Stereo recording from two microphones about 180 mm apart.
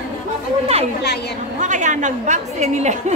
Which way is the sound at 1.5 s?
45° right (ahead or behind).